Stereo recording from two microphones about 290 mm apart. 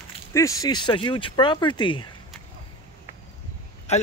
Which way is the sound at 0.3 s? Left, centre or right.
Centre.